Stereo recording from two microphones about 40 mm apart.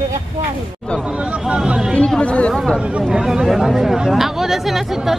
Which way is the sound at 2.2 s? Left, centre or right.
Left.